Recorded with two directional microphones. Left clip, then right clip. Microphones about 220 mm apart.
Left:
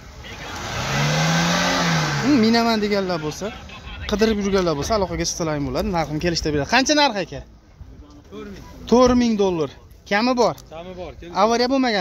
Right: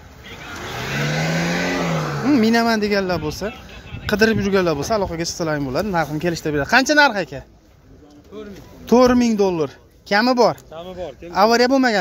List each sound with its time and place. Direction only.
0.6 s vehicle: 45° left (ahead or behind)
2.3 s a man's voice: 10° right (ahead or behind)
3.5 s a sound: 50° left (ahead or behind)
4.0 s a man's voice: 15° right (ahead or behind)